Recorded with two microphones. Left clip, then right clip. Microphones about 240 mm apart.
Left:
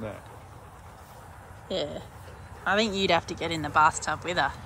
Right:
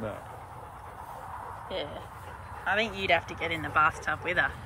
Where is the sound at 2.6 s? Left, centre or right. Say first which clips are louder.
Left 3 dB; centre.